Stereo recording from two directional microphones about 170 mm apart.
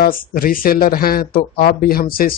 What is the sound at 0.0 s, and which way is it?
Speech, 55° left (ahead or behind).